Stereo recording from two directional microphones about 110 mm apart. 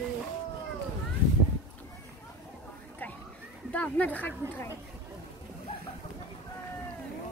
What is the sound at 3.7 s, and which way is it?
Speech, 15° left (ahead or behind).